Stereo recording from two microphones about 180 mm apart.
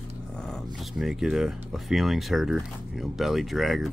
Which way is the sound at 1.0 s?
5° right (ahead or behind).